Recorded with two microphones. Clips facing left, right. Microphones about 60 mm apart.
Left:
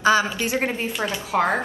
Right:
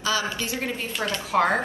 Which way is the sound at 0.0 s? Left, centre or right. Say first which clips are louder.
Left 7 dB; left.